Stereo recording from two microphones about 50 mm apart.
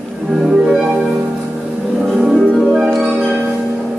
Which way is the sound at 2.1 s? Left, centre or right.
Centre.